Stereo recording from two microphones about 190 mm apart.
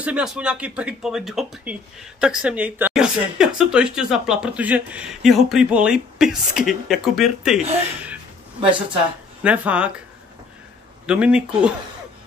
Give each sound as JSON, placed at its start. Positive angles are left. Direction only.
{"t": 0.0, "sound": "speech", "side_deg": -5}
{"t": 8.5, "sound": "a woman's voice", "side_deg": -25}
{"t": 9.4, "sound": "speech", "side_deg": -5}
{"t": 11.1, "sound": "speech", "side_deg": -5}